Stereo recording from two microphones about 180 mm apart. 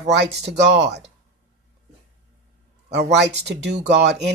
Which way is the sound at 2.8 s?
70° right (ahead or behind).